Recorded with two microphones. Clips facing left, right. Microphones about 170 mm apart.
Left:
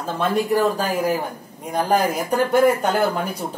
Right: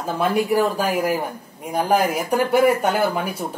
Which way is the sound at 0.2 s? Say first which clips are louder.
Even; 10° right (ahead or behind).